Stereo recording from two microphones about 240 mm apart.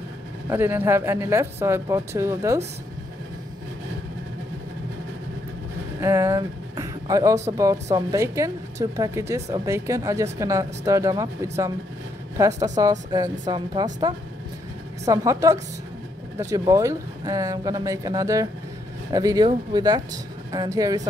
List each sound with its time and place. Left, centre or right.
0.5 s speech: centre
5.9 s a sound: centre
7.5 s speech: centre
15.0 s speech: centre